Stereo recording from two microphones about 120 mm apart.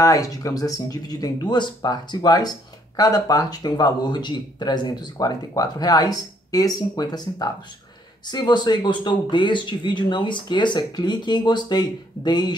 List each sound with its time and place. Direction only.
0.0 s speech: 30° left (ahead or behind)